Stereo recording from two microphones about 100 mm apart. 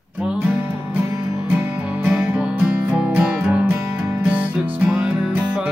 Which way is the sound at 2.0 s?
10° right (ahead or behind).